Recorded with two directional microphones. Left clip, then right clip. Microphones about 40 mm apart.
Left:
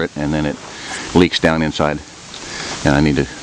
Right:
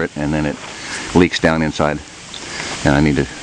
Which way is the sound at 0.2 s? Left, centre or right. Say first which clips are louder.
Even; centre.